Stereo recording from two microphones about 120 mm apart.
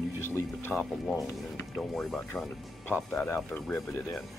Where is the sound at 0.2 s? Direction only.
20° left (ahead or behind).